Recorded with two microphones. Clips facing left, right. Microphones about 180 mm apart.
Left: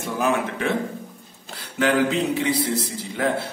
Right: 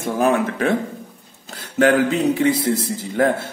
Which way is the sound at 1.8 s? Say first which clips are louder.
Right 4 dB; 45° right (ahead or behind).